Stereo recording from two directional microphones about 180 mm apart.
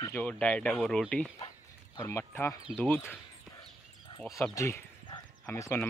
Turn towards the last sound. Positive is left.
turn(degrees=15)  # may be behind; listen again after turning